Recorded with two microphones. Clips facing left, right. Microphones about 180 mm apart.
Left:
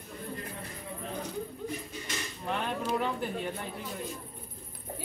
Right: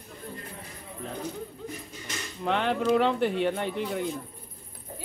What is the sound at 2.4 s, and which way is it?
Speech, 90° right.